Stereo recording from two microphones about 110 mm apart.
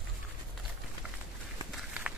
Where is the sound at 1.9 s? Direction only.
10° right (ahead or behind).